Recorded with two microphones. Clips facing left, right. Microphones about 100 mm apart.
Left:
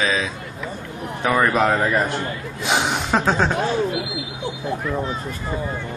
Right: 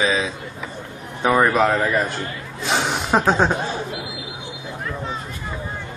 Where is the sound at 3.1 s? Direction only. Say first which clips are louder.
Right 3 dB; 15° right (ahead or behind).